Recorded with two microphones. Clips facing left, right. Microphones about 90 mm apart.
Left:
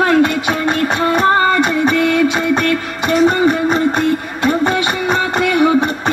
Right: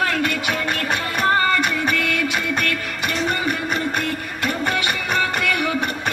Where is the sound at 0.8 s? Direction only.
30° left (ahead or behind).